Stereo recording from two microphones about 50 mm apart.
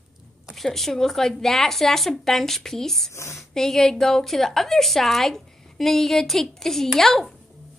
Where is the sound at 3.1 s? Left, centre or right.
Left.